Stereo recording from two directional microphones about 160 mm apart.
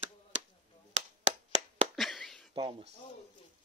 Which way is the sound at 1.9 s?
Centre (ahead or behind).